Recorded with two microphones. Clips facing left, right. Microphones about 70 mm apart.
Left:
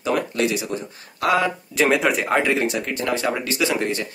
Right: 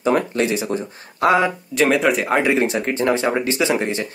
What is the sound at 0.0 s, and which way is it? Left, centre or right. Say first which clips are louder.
Speech: right 3 dB; right.